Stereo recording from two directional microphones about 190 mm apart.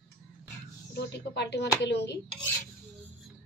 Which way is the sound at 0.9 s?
65° left (ahead or behind).